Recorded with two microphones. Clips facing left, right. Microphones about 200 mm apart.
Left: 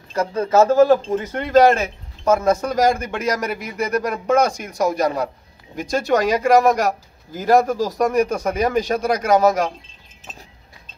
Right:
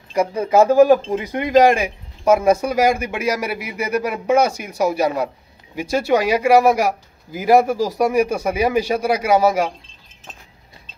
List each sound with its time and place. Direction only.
0.1 s speech: 10° right (ahead or behind)